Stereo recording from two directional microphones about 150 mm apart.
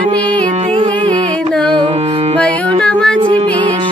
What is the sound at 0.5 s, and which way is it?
Music, 50° right (ahead or behind).